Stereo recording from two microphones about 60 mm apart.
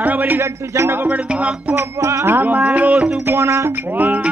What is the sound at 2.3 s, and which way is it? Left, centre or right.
Speech, right.